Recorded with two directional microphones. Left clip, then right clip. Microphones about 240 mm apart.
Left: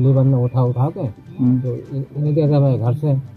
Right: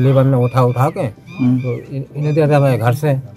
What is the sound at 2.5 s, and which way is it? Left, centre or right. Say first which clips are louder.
Speech: right 6 dB; right.